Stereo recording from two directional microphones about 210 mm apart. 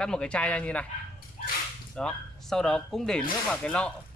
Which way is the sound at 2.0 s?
5° left (ahead or behind).